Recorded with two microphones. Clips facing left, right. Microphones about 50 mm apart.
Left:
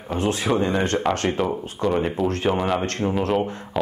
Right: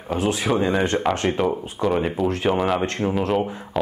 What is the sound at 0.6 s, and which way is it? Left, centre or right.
Speech, centre.